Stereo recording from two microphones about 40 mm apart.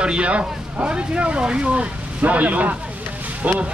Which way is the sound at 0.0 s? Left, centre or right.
Right.